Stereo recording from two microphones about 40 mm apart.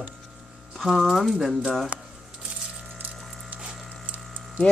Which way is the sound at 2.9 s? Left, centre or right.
Right.